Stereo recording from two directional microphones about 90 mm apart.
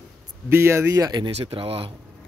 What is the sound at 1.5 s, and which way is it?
Speech, 85° right.